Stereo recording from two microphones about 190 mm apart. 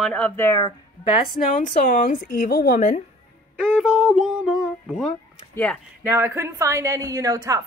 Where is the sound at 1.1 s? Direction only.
35° left (ahead or behind); by 2.7 s 55° left (ahead or behind).